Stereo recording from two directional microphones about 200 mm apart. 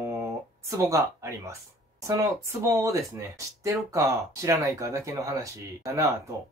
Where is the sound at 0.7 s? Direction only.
15° right (ahead or behind).